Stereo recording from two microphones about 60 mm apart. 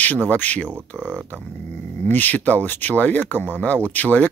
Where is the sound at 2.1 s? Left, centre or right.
Left.